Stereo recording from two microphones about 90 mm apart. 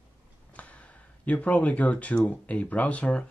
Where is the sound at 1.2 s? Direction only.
15° left (ahead or behind).